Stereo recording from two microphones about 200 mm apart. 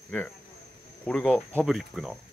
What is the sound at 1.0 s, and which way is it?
Speech, 5° left (ahead or behind).